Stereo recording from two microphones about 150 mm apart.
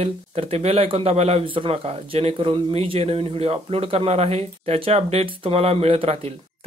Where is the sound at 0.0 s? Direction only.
40° right (ahead or behind).